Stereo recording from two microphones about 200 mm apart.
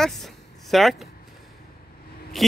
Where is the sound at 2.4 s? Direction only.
Centre (ahead or behind).